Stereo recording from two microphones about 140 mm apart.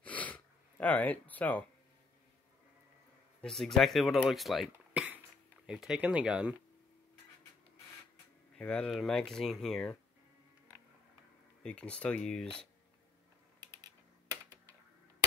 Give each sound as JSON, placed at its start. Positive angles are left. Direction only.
{"t": 0.0, "sound": "gasp", "side_deg": 10}
{"t": 3.3, "sound": "speech", "side_deg": 5}
{"t": 8.5, "sound": "speech", "side_deg": 5}
{"t": 11.6, "sound": "speech", "side_deg": 10}
{"t": 13.6, "sound": "typing", "side_deg": -30}